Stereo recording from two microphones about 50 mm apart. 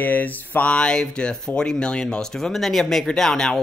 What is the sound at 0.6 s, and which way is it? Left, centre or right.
Speech, centre.